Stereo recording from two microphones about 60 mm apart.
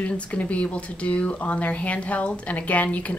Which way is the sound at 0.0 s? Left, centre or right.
Left.